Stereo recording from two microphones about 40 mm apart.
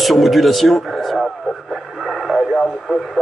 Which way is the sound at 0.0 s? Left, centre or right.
Centre.